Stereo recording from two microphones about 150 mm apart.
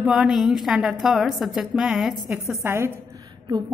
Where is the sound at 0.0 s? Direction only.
5° right (ahead or behind).